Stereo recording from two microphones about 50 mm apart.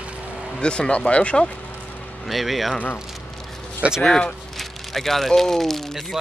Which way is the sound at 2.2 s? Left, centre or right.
Centre.